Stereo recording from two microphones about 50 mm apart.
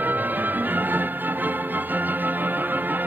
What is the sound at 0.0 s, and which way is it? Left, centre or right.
Music, right.